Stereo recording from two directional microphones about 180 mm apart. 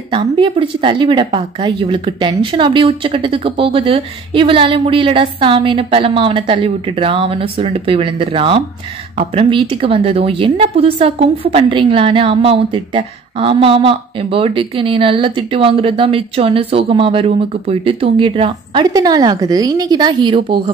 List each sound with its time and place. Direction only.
0.1 s a woman's voice: 30° right (ahead or behind)